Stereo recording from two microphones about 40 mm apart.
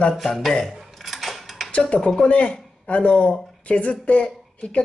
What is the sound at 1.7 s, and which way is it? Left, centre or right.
Dishes, left.